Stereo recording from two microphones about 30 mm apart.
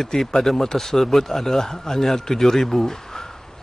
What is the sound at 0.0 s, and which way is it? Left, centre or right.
A man's voice, centre.